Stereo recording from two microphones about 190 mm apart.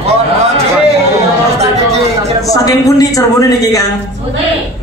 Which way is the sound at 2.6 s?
20° left (ahead or behind).